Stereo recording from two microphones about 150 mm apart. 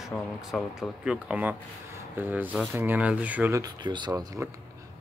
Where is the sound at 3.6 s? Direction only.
30° right (ahead or behind).